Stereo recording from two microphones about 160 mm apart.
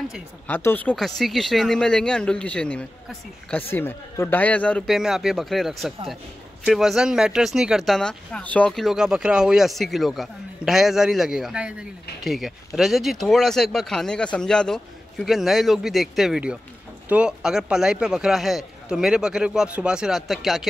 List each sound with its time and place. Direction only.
0.5 s a man's voice: 10° left (ahead or behind)